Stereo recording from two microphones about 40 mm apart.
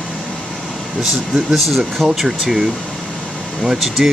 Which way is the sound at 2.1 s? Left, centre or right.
Centre.